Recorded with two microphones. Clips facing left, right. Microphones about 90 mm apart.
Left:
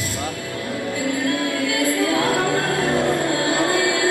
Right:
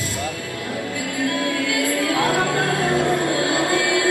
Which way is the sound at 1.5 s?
25° left (ahead or behind).